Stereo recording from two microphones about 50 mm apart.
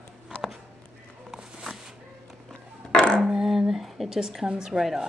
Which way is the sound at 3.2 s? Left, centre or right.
Centre.